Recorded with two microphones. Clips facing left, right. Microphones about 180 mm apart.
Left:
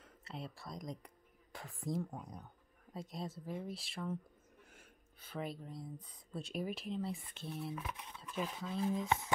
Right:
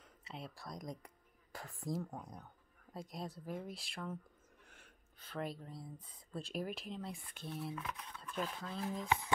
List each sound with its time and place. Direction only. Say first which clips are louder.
0.0 s speech: left 2 dB; centre (ahead or behind)
5.2 s speech: even; centre (ahead or behind)
7.7 s speech: even; 15° left (ahead or behind)
8.2 s speech: left 1 dB; 5° left (ahead or behind)